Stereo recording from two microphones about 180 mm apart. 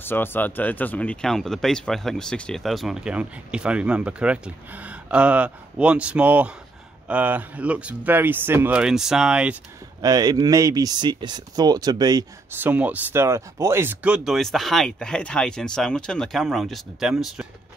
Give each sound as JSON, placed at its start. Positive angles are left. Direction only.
{"t": 0.0, "sound": "speech", "side_deg": 10}
{"t": 10.0, "sound": "speech", "side_deg": -20}
{"t": 12.5, "sound": "speech", "side_deg": -10}